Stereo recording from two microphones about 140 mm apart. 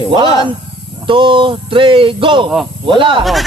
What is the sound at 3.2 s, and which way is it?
Speech, centre (ahead or behind).